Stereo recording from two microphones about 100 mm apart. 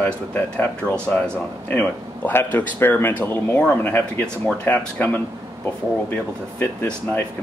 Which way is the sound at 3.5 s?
10° left (ahead or behind).